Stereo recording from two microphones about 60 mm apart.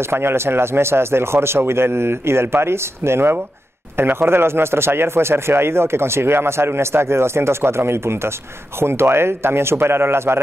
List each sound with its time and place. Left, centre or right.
0.0 s speech: right